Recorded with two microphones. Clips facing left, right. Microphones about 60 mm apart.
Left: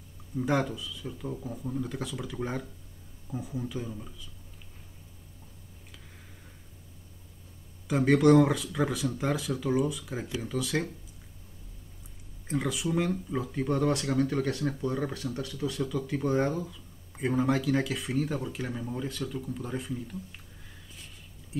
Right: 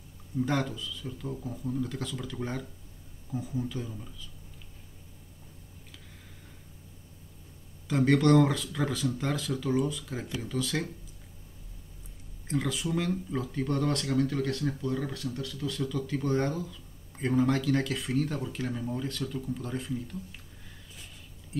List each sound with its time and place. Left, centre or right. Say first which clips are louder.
0.4 s speech: left 1 dB; centre
7.9 s speech: left 2 dB; centre
12.4 s speech: left 1 dB; centre